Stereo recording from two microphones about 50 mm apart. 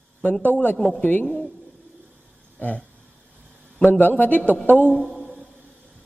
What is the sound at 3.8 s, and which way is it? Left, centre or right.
A man's voice, left.